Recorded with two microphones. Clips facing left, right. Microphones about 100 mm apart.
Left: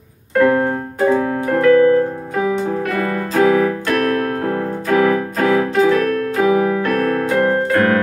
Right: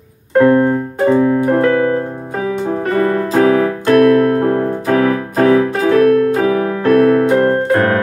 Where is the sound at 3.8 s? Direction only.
35° right (ahead or behind).